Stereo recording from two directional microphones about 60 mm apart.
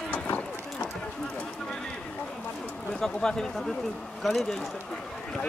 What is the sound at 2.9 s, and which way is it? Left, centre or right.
Speech, centre.